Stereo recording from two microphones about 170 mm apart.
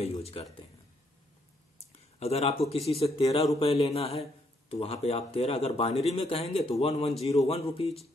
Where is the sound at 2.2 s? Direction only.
35° left (ahead or behind).